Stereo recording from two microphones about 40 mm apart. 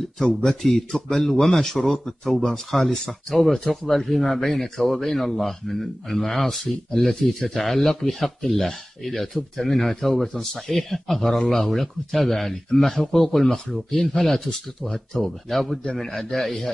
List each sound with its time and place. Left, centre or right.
0.4 s speech: centre
15.8 s a man's voice: left
16.1 s a man's voice: centre